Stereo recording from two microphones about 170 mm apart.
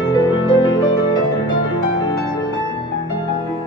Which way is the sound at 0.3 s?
25° left (ahead or behind).